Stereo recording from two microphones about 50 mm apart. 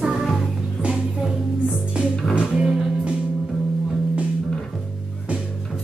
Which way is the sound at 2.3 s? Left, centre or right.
Right.